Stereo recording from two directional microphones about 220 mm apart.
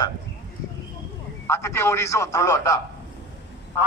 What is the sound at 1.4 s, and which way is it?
Speech, 10° left (ahead or behind).